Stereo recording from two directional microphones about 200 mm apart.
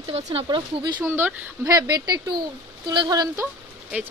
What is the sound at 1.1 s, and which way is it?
A woman's voice, 10° right (ahead or behind).